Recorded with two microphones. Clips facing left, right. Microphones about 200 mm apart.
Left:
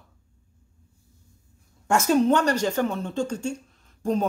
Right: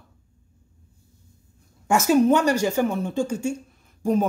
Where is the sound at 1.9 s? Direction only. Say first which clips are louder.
Right 2 dB; 5° right (ahead or behind).